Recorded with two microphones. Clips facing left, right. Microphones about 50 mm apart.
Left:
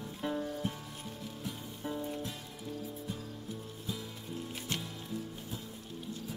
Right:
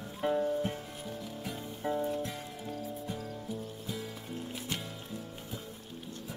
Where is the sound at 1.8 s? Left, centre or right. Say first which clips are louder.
Right 5 dB; right.